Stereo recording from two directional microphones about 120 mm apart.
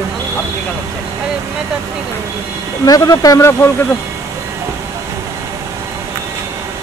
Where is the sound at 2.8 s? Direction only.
30° left (ahead or behind).